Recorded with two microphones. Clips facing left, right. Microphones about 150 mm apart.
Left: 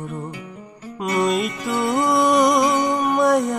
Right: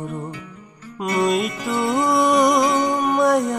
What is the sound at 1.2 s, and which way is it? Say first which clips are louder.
Music: right 1 dB; centre (ahead or behind).